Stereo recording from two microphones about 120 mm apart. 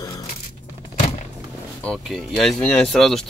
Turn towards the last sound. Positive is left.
turn(degrees=0)  # may be behind; listen again after turning